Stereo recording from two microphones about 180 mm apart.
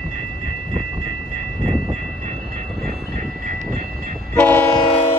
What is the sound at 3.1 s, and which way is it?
Train, 40° right (ahead or behind).